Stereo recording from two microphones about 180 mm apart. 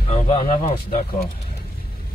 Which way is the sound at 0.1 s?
35° left (ahead or behind).